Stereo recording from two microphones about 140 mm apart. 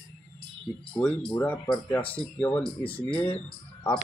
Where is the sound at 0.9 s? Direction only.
10° left (ahead or behind).